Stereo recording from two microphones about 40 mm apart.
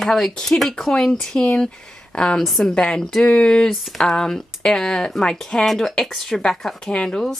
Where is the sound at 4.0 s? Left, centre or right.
Centre.